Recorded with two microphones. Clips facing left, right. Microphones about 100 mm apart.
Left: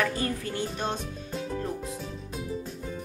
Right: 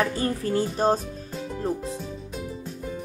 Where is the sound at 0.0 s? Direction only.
30° right (ahead or behind).